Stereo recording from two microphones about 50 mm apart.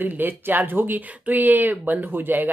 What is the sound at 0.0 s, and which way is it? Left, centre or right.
Speech, right.